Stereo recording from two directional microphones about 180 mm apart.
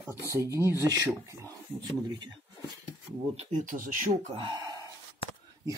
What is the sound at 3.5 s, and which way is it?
Speech, 45° right (ahead or behind).